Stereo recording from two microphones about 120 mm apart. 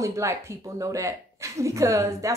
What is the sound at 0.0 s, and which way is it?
A woman's voice, 25° right (ahead or behind).